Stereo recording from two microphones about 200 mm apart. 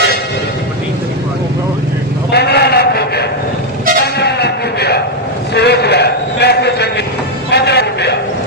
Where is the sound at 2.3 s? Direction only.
55° left (ahead or behind).